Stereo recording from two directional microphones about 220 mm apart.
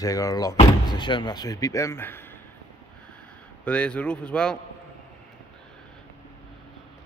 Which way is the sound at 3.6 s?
5° left (ahead or behind).